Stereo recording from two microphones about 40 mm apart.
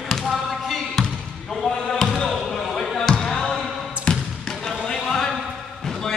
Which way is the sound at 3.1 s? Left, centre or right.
Centre.